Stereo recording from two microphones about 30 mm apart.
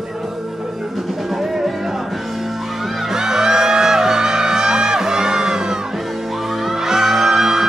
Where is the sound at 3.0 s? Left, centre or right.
Centre.